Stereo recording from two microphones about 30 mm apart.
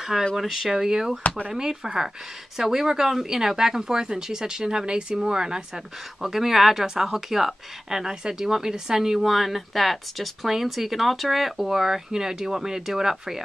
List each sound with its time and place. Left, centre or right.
0.1 s speech: centre
6.2 s speech: centre
8.0 s speech: right
9.2 s speech: centre